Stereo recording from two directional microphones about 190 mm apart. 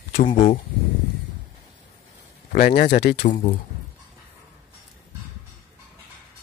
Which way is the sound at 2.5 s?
50° left (ahead or behind).